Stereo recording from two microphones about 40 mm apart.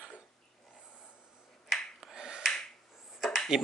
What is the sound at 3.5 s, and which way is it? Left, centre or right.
Speech, centre.